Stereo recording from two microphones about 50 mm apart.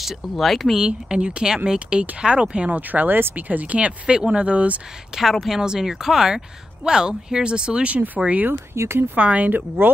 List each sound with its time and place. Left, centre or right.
0.0 s speech: centre
0.7 s speech: centre
2.9 s speech: right
5.3 s speech: centre
5.6 s speech: centre
8.7 s speech: right
9.1 s speech: right
9.5 s speech: right